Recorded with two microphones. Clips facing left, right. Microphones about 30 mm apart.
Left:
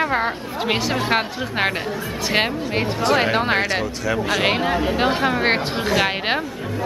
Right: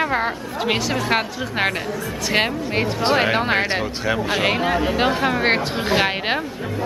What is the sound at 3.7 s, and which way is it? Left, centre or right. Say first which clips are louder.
Speech: even; centre.